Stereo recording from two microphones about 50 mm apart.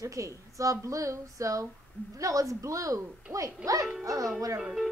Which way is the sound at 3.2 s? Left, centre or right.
Right.